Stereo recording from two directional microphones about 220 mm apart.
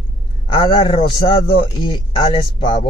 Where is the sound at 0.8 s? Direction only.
20° left (ahead or behind).